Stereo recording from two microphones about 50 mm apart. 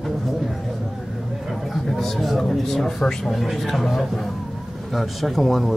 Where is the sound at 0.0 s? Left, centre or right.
Centre.